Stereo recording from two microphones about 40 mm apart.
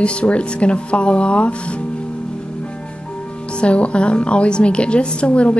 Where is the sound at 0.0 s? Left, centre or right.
Left.